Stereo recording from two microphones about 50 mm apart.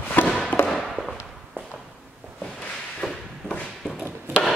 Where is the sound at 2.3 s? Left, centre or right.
Centre.